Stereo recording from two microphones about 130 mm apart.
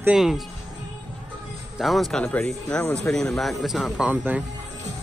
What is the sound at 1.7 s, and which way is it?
A man's voice, centre (ahead or behind).